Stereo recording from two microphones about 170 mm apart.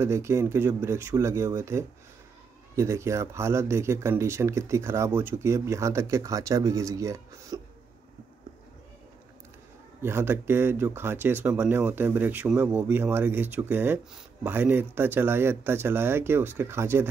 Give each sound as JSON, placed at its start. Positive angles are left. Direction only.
{"t": 0.0, "sound": "speech", "side_deg": -15}
{"t": 10.0, "sound": "speech", "side_deg": -15}